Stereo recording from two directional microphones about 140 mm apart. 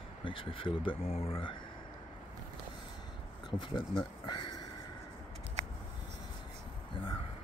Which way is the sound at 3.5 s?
35° left (ahead or behind).